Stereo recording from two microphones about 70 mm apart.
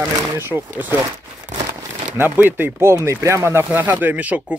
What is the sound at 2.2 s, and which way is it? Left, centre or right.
Speech, right.